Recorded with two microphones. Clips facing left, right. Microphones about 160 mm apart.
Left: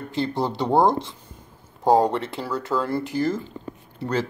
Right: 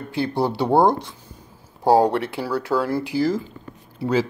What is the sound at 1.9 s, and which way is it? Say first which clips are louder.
Speech: right 2 dB; 10° right (ahead or behind).